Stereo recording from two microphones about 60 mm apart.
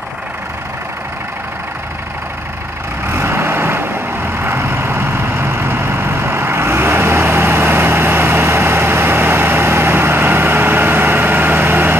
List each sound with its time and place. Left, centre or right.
3.1 s vehicle: right